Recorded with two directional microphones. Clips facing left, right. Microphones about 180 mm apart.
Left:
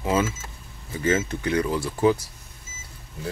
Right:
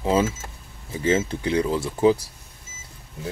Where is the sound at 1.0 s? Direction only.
25° right (ahead or behind).